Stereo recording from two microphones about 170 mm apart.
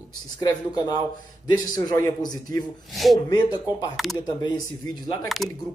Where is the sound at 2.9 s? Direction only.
Centre (ahead or behind).